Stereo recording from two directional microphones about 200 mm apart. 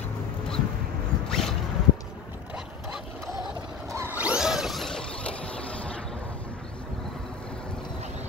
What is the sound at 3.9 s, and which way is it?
Mechanisms, 10° right (ahead or behind).